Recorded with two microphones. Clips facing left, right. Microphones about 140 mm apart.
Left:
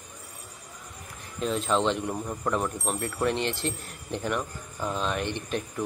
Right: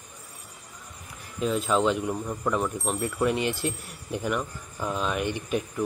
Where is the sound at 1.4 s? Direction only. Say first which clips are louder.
Right 2 dB; 5° right (ahead or behind).